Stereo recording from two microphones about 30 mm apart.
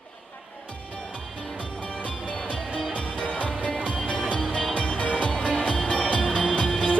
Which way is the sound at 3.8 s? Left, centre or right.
Left.